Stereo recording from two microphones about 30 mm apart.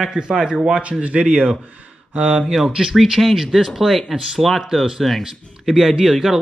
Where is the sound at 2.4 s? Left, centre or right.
Centre.